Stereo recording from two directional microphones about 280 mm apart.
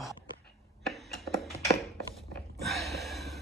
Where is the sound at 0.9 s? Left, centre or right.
Centre.